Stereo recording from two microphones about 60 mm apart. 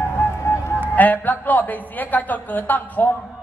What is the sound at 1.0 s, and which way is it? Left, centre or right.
Speech, left.